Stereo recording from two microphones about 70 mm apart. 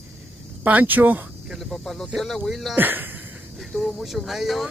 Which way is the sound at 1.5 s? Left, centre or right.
Centre.